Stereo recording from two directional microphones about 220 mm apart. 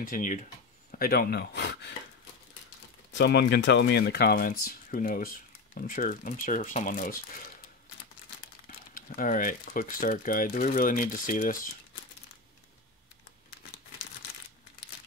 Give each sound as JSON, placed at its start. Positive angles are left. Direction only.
{"t": 0.0, "sound": "speech", "side_deg": 40}
{"t": 3.1, "sound": "speech", "side_deg": 50}
{"t": 8.6, "sound": "speech", "side_deg": 40}